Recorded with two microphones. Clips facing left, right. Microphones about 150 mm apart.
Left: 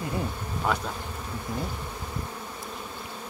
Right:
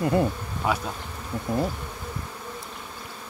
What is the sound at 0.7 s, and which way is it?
Bee, 5° right (ahead or behind).